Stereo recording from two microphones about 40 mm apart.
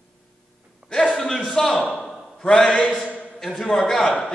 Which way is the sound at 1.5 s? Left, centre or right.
Centre.